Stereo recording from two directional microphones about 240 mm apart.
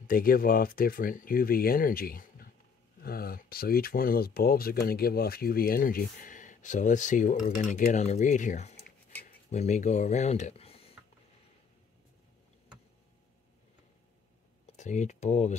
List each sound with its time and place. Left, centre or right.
0.0 s speech: left
14.8 s speech: left